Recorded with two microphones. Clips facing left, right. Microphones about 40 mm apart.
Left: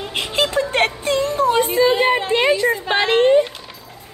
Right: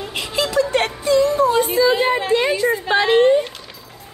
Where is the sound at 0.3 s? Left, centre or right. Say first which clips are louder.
Right 1 dB; left.